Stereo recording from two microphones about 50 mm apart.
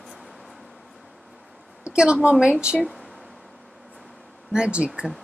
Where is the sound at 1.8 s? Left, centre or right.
Centre.